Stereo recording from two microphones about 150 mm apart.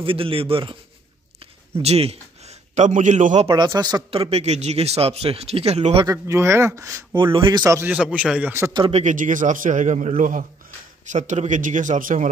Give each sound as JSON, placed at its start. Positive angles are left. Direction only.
{"t": 0.0, "sound": "a man's voice", "side_deg": -35}
{"t": 1.8, "sound": "a man's voice", "side_deg": -45}
{"t": 2.7, "sound": "a man's voice", "side_deg": -55}
{"t": 3.4, "sound": "speech", "side_deg": -25}
{"t": 4.1, "sound": "a man's voice", "side_deg": -40}
{"t": 6.0, "sound": "speech", "side_deg": -20}
{"t": 7.3, "sound": "a man's voice", "side_deg": -35}
{"t": 7.6, "sound": "a man's voice", "side_deg": -15}
{"t": 8.7, "sound": "a man's voice", "side_deg": -35}
{"t": 9.0, "sound": "a man's voice", "side_deg": -60}